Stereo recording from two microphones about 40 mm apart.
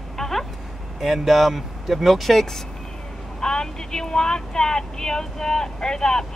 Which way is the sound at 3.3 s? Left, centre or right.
Centre.